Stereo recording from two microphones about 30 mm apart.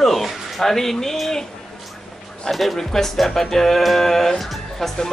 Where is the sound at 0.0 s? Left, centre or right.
Centre.